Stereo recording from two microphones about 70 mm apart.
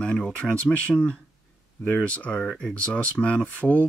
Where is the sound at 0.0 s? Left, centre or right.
Centre.